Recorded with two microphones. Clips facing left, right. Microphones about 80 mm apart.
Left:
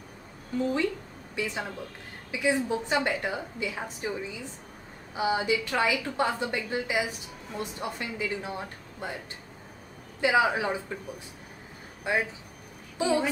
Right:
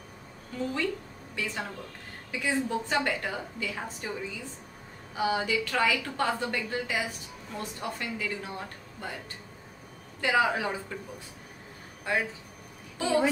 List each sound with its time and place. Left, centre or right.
1.3 s a woman's voice: centre
10.2 s a woman's voice: centre
12.1 s a woman's voice: centre